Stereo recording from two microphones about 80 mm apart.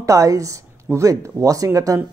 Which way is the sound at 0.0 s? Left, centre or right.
Right.